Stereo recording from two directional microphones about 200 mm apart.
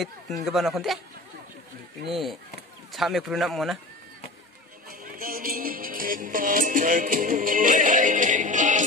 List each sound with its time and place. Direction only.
0.5 s speech: centre (ahead or behind)
2.0 s speech: centre (ahead or behind)
4.8 s speech: 45° right (ahead or behind)